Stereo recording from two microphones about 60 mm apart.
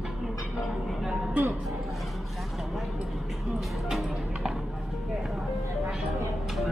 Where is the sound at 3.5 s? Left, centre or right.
Centre.